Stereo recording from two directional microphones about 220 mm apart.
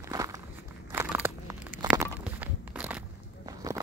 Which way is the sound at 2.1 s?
10° right (ahead or behind).